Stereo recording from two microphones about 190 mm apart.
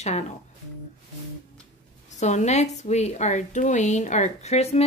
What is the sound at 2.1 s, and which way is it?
A woman's voice, 40° left (ahead or behind).